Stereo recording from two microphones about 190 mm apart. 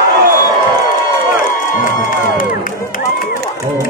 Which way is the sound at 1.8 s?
45° left (ahead or behind).